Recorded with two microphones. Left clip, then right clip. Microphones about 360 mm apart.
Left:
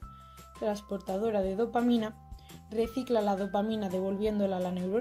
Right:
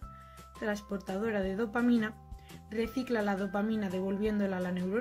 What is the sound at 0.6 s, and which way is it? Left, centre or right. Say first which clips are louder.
Speech: left 3 dB; left.